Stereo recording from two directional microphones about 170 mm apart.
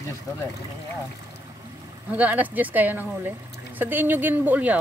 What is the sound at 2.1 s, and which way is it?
Speech, 10° right (ahead or behind).